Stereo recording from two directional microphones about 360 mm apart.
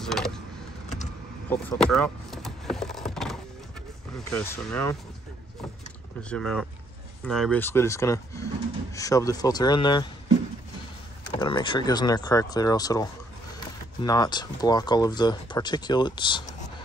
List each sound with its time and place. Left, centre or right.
0.0 s vehicle: centre
1.5 s vehicle: centre
4.2 s speech: centre
6.3 s speech: centre
11.4 s speech: centre